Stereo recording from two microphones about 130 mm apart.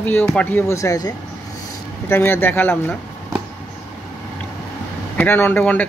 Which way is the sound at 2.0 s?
15° left (ahead or behind).